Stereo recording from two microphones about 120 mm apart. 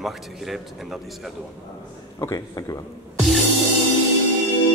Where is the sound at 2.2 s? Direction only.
30° left (ahead or behind).